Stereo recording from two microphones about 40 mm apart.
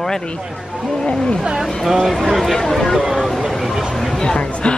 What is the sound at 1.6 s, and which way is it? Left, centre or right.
Speech, centre.